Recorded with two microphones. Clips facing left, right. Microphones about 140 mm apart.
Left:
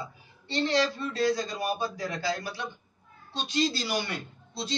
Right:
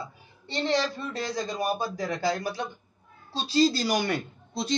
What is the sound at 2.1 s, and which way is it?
Speech, 50° right (ahead or behind).